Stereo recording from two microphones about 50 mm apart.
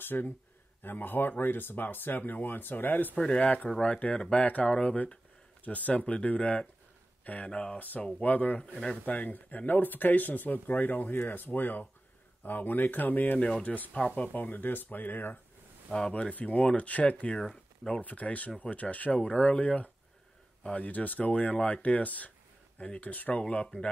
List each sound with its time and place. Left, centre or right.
0.0 s speech: left
3.2 s speech: left
15.9 s speech: left
17.4 s speech: centre
18.0 s speech: left
22.8 s speech: centre
23.0 s speech: left